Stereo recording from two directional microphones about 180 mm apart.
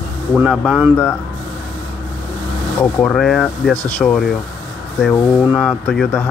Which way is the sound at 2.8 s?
5° left (ahead or behind).